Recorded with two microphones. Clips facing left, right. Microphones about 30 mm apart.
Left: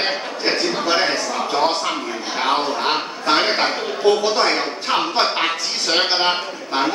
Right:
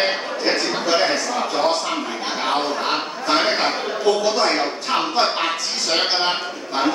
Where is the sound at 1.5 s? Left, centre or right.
Left.